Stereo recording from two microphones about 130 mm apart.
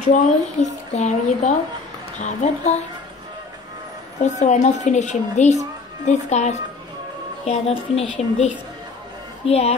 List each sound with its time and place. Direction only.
0.0 s a woman's voice: 65° left (ahead or behind)
4.2 s a woman's voice: 65° left (ahead or behind)
9.5 s speech: 55° left (ahead or behind)